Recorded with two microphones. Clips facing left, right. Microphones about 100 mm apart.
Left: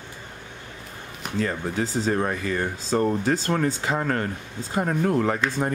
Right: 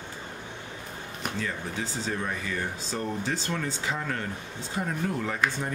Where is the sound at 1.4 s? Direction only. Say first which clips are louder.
Left 10 dB; 45° left (ahead or behind).